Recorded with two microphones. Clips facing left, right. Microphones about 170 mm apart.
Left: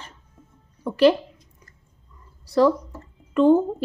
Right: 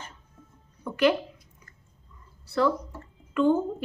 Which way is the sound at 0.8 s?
35° left (ahead or behind).